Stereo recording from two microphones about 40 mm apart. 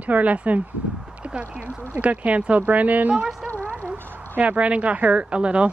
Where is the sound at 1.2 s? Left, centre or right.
Right.